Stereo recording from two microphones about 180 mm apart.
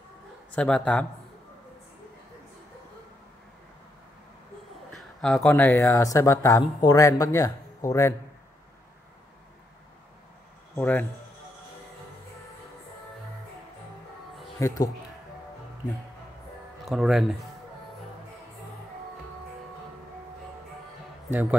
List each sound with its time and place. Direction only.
0.5 s speech: 5° left (ahead or behind)
4.9 s speech: 5° left (ahead or behind)
10.8 s speech: 10° left (ahead or behind)
14.6 s speech: 20° left (ahead or behind)
16.8 s speech: centre (ahead or behind)
21.3 s a man's voice: 10° right (ahead or behind)